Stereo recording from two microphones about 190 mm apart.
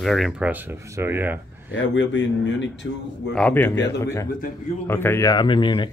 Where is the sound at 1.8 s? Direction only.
75° left (ahead or behind).